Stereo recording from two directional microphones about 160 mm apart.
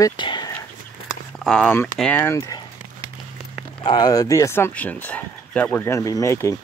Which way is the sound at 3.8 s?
25° left (ahead or behind).